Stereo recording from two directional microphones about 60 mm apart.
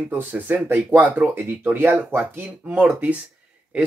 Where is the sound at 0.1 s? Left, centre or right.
Right.